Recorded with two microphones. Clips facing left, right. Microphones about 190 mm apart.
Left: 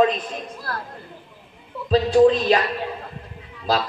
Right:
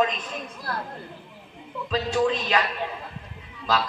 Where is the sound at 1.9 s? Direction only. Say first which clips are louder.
Left 9 dB; 35° left (ahead or behind).